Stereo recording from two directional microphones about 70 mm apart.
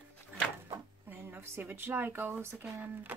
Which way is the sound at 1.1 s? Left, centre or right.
Right.